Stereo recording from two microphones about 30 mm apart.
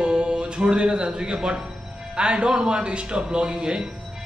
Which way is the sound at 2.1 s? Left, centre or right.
Right.